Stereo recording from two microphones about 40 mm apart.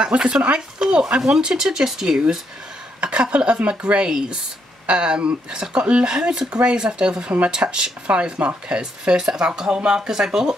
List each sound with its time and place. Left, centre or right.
0.0 s speech: right
3.0 s speech: right